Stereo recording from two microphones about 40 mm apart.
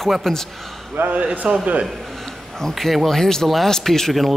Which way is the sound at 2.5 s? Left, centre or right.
Centre.